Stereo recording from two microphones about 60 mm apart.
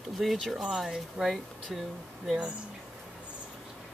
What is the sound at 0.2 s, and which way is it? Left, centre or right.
Speech, centre.